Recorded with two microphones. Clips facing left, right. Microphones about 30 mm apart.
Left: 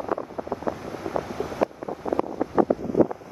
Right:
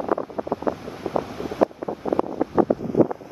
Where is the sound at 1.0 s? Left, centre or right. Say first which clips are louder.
Right 2 dB; centre.